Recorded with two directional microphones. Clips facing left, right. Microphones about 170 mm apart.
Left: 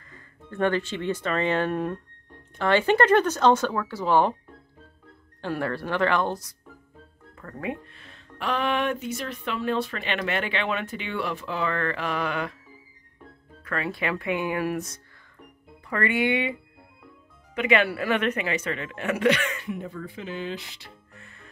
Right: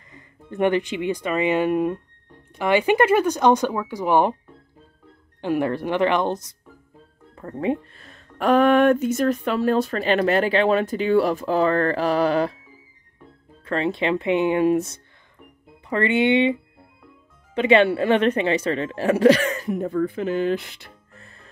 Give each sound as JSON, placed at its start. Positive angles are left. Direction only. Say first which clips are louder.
{"t": 0.1, "sound": "speech", "louder": "right 4 dB", "side_deg": -15}
{"t": 5.4, "sound": "speech", "louder": "right 6 dB", "side_deg": -15}
{"t": 7.9, "sound": "speech", "louder": "right 1 dB", "side_deg": -40}
{"t": 13.7, "sound": "speech", "louder": "right 7 dB", "side_deg": -25}
{"t": 17.6, "sound": "speech", "louder": "right 6 dB", "side_deg": -30}
{"t": 19.9, "sound": "speech", "louder": "right 12 dB", "side_deg": -55}
{"t": 21.1, "sound": "music", "louder": "right 1 dB", "side_deg": -35}